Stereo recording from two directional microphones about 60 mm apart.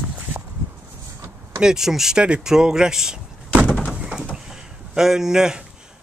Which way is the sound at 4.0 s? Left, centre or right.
Centre.